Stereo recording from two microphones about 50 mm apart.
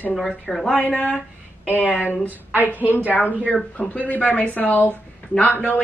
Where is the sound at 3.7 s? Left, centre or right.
Left.